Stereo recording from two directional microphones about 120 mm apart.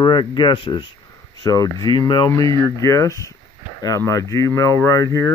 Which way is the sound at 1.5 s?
30° left (ahead or behind).